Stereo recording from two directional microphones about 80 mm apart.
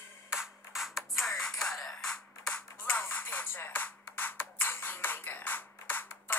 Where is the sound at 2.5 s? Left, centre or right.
Centre.